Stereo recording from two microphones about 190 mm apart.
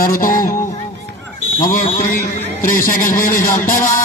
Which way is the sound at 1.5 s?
45° left (ahead or behind).